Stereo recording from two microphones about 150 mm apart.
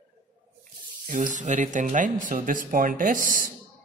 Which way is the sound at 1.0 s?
60° right (ahead or behind).